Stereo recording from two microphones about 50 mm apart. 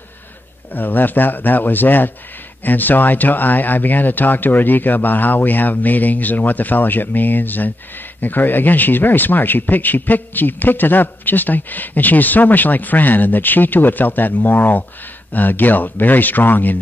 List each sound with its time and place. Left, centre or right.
0.7 s speech: left